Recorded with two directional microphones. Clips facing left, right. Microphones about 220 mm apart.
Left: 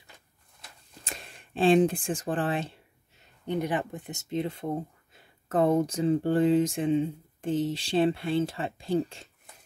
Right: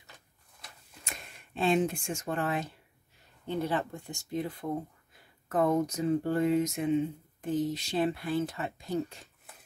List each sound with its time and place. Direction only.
1.0 s speech: 30° left (ahead or behind)